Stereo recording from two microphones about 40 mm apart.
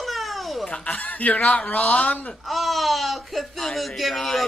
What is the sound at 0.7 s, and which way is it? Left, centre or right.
Speech, left.